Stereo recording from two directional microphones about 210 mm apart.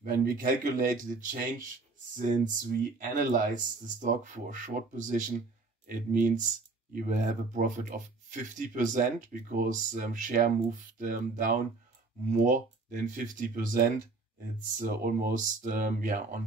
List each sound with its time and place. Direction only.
0.0 s speech: 40° right (ahead or behind)